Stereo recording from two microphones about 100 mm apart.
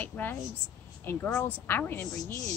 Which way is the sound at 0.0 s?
20° left (ahead or behind).